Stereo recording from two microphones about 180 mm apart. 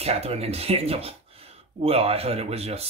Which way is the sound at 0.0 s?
35° right (ahead or behind).